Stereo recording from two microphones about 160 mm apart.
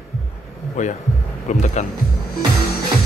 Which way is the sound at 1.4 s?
45° left (ahead or behind).